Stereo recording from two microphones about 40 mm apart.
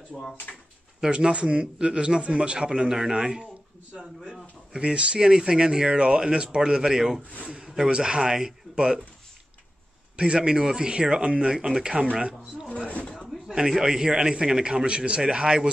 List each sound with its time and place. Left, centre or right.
0.1 s speech: centre
1.0 s a man's voice: right
4.7 s a man's voice: right
10.1 s a man's voice: right
13.5 s a man's voice: centre